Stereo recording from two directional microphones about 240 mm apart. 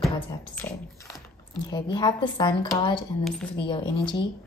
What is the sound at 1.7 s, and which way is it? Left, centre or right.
A woman's voice, centre.